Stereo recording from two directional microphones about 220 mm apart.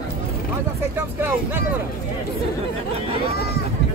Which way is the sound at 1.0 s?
10° right (ahead or behind).